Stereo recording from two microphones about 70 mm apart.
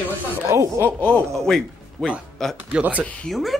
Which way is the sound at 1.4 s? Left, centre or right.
Centre.